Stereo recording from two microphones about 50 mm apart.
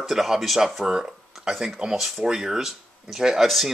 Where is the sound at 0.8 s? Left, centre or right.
Centre.